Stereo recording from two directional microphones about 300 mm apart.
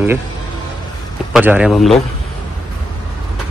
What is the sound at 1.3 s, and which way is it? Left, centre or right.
Speech, centre.